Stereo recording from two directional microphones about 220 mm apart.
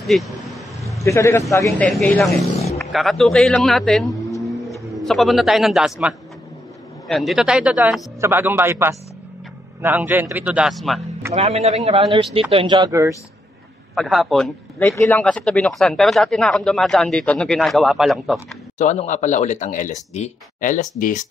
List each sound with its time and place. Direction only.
0.0 s speech: centre (ahead or behind)
0.4 s vehicle: centre (ahead or behind)
1.0 s speech: 15° left (ahead or behind)
4.4 s a sound: centre (ahead or behind)
4.9 s speech: centre (ahead or behind)
11.3 s speech: 30° right (ahead or behind)
13.9 s speech: centre (ahead or behind)
18.8 s speech: 35° left (ahead or behind)